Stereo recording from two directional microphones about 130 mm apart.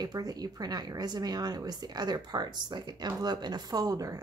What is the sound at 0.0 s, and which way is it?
A woman's voice, 30° right (ahead or behind).